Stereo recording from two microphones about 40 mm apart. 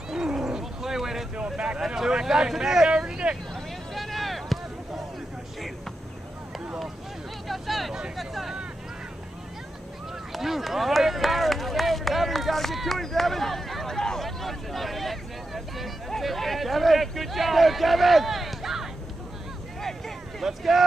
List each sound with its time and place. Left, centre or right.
0.1 s roaring cats: centre
1.3 s speech: right
2.0 s speech: centre
3.5 s a sound: centre
7.4 s speech: centre
10.3 s speech: centre
14.2 s vehicle: centre
16.1 s speech: centre
19.8 s a sound: centre
20.4 s speech: centre